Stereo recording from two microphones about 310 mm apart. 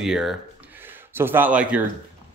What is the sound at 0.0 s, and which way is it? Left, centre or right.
Speech, centre.